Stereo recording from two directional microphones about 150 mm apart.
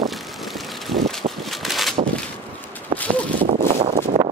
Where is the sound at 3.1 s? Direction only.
35° right (ahead or behind).